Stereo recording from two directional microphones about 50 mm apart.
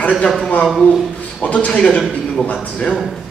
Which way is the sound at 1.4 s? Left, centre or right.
Left.